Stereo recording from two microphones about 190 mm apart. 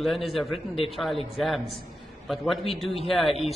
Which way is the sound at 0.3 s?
Centre (ahead or behind).